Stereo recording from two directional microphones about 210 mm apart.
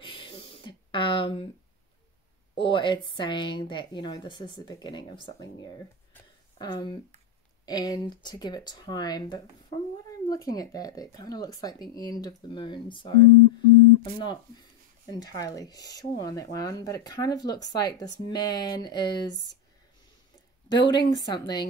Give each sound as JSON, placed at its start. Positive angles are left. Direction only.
{"t": 0.0, "sound": "a sound", "side_deg": 25}
{"t": 2.5, "sound": "a woman's voice", "side_deg": 25}
{"t": 6.6, "sound": "a woman's voice", "side_deg": 20}
{"t": 20.6, "sound": "a woman's voice", "side_deg": 20}